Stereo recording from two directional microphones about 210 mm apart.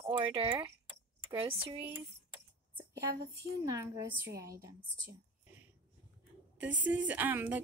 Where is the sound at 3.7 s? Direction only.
15° right (ahead or behind).